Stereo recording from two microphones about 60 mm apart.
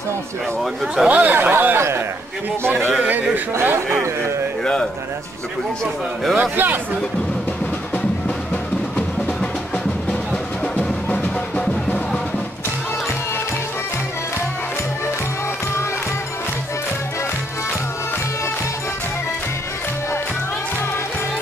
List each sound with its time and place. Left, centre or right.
1.0 s speech: right
6.3 s speech: right